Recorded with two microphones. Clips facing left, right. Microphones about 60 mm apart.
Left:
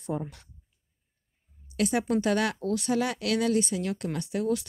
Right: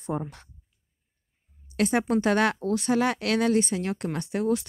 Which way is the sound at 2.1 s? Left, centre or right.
Right.